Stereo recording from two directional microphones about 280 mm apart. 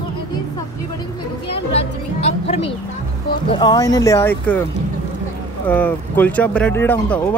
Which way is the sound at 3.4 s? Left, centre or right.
Centre.